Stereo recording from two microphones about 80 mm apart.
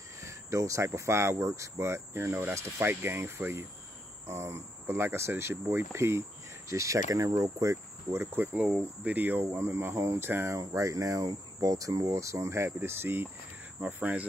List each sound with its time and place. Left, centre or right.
0.2 s speech: right
7.7 s cricket: right
8.5 s speech: centre
9.1 s speech: right
10.6 s speech: right; by 14.2 s centre